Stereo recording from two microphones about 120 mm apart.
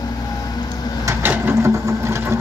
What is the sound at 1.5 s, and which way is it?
Sewing machine, 25° right (ahead or behind).